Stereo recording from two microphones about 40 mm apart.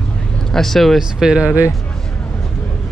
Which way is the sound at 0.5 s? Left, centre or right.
Centre.